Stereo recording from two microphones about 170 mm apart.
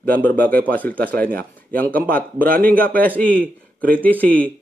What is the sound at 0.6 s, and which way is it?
Speech, 10° left (ahead or behind).